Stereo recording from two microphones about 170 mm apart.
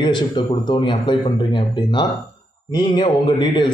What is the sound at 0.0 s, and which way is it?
Speech, 25° left (ahead or behind).